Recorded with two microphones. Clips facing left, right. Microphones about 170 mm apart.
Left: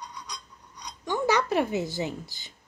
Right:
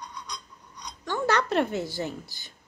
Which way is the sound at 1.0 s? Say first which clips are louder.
Left 1 dB; 15° left (ahead or behind).